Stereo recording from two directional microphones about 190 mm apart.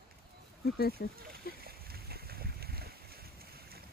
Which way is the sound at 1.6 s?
55° right (ahead or behind).